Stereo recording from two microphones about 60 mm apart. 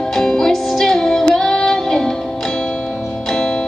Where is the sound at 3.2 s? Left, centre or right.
Centre.